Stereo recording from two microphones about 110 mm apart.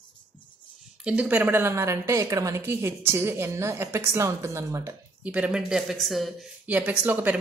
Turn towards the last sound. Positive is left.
turn(degrees=-15)  # may be behind; listen again after turning